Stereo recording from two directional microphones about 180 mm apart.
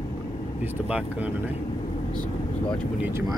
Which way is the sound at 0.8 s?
5° right (ahead or behind).